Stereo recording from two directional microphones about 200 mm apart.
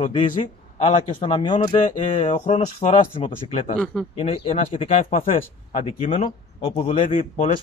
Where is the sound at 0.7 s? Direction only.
30° left (ahead or behind).